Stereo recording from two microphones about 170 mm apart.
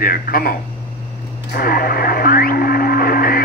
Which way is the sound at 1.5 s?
60° left (ahead or behind).